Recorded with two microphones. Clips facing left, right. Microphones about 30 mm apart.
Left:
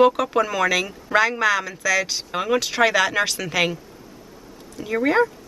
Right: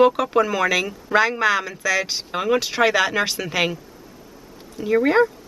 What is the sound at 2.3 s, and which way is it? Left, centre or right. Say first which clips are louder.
Speech: right 1 dB; centre.